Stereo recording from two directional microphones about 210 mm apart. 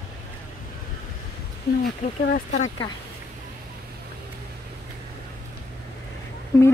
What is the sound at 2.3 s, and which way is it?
Speech, 35° left (ahead or behind).